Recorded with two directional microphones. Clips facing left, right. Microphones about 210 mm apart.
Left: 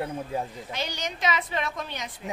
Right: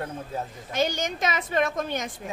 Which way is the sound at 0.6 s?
45° right (ahead or behind).